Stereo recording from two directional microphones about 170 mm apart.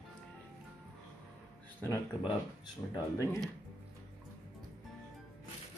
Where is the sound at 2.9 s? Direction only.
20° left (ahead or behind).